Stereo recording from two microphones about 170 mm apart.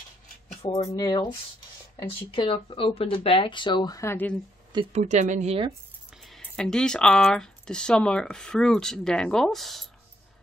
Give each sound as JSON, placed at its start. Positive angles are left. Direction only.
{"t": 0.6, "sound": "speech", "side_deg": 25}
{"t": 4.9, "sound": "speech", "side_deg": -45}
{"t": 6.2, "sound": "speech", "side_deg": 5}